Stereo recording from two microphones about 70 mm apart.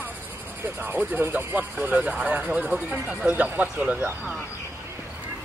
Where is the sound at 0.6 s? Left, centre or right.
Right.